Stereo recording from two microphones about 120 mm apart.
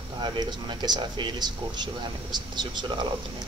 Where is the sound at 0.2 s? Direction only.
35° right (ahead or behind).